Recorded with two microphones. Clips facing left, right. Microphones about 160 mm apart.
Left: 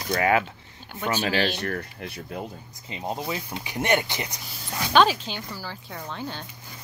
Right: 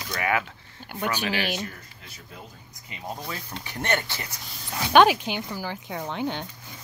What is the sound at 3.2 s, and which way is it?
Speech, 10° left (ahead or behind).